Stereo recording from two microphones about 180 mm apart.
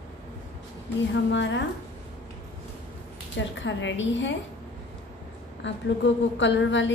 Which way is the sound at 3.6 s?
90° left.